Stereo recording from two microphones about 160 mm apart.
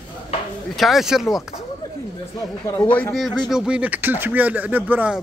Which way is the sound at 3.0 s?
Centre (ahead or behind).